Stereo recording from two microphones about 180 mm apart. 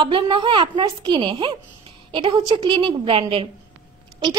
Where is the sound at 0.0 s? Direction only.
30° right (ahead or behind).